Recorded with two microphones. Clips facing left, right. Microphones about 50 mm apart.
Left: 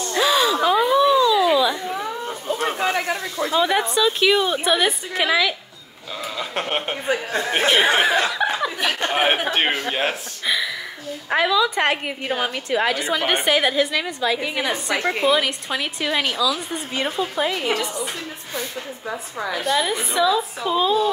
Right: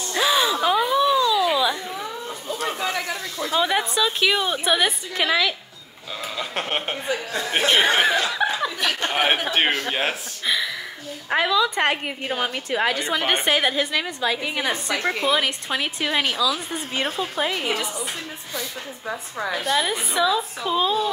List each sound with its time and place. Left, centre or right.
0.0 s gasp: centre
2.2 s a sound: left
3.5 s a woman's voice: centre
7.1 s speech: left
7.5 s a woman's voice: centre
9.8 s a woman's voice: centre
19.0 s a woman's voice: centre